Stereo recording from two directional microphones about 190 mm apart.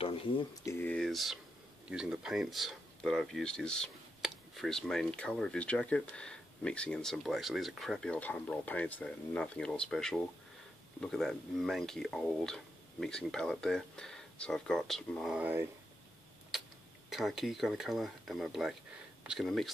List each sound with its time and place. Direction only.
0.0 s a sound: 30° left (ahead or behind)
0.7 s speech: 10° left (ahead or behind); by 15.6 s 5° right (ahead or behind)
17.1 s speech: centre (ahead or behind)